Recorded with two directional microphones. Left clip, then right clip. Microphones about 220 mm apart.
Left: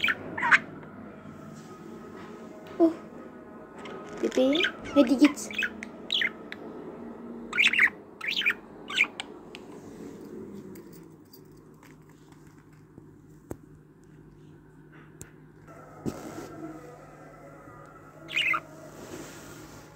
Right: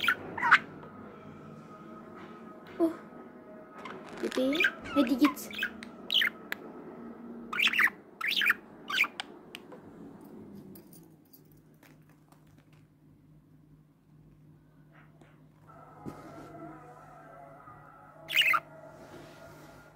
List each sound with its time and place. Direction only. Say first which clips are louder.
0.0 s a sound: left 2 dB; 20° right (ahead or behind)
2.8 s speech: left 6 dB; 20° right (ahead or behind)
3.7 s rodents: left 3 dB; 20° right (ahead or behind)
6.0 s bird: even; 25° right (ahead or behind)
7.4 s bird: left 4 dB; 20° right (ahead or behind)
18.2 s bird: right 1 dB; 30° right (ahead or behind)